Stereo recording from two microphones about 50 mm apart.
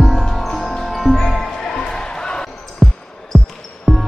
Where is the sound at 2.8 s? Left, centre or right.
Centre.